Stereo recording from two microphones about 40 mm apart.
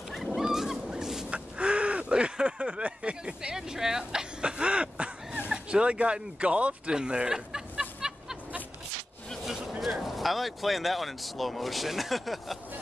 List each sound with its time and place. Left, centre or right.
0.1 s goose: centre
1.3 s a sound: right
3.5 s speech: centre
8.0 s a sound: centre
9.5 s vehicle: centre
10.0 s speech: centre